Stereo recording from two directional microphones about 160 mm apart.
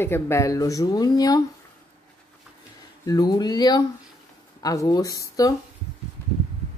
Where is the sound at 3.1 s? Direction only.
25° left (ahead or behind).